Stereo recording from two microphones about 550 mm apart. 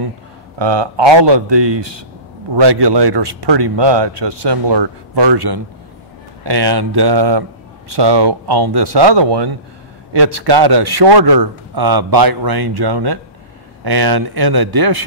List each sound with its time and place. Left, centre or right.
0.6 s speech: right